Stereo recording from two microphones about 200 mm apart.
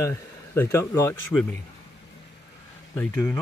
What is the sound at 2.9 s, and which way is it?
Speech, 10° left (ahead or behind).